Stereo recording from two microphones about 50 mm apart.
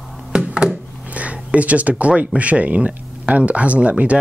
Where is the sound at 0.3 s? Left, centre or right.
Centre.